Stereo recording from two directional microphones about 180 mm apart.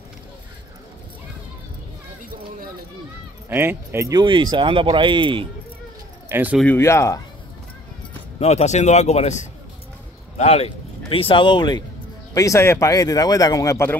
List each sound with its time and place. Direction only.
3.4 s speech: 10° right (ahead or behind); by 5.5 s 25° right (ahead or behind)
6.2 s speech: 10° right (ahead or behind)
6.6 s speech: 10° left (ahead or behind)
8.4 s speech: 35° left (ahead or behind); by 13.9 s 15° left (ahead or behind)